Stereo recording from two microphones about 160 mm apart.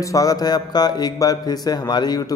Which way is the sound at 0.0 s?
20° left (ahead or behind).